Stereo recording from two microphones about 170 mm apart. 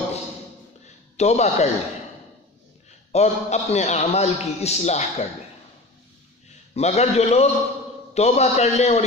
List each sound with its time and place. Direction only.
1.1 s a man's voice: 40° left (ahead or behind)
3.1 s a man's voice: 40° left (ahead or behind)
6.7 s a man's voice: 40° left (ahead or behind)